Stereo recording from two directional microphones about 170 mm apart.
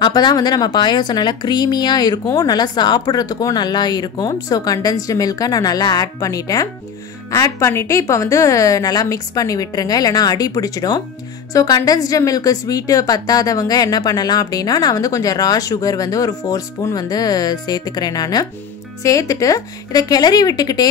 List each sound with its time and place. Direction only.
0.0 s a woman's voice: 25° left (ahead or behind)